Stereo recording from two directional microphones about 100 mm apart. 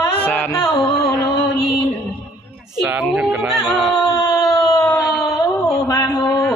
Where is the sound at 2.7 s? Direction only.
5° right (ahead or behind).